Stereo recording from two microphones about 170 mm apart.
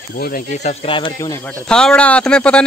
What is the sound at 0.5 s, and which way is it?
Speech, 35° left (ahead or behind).